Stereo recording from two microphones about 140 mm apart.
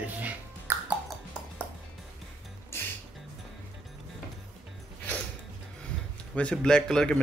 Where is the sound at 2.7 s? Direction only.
20° left (ahead or behind).